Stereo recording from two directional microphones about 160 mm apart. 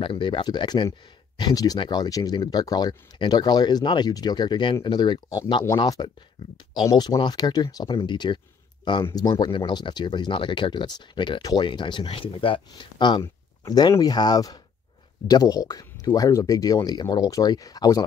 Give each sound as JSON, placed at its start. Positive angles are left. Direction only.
{"t": 0.0, "sound": "speech", "side_deg": 30}